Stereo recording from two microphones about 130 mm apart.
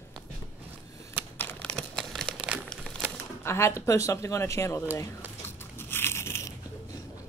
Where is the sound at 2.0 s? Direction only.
Centre (ahead or behind).